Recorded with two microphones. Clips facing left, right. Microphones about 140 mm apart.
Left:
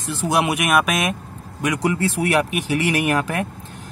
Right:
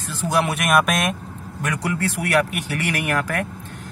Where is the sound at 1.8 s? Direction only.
20° left (ahead or behind).